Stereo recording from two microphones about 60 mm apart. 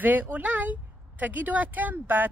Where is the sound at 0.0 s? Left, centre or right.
Right.